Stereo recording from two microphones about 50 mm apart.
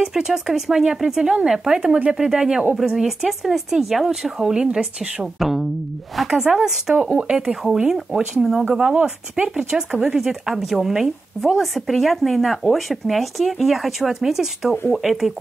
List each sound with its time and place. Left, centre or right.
0.0 s speech: centre
5.4 s speech: centre
7.7 s speech: centre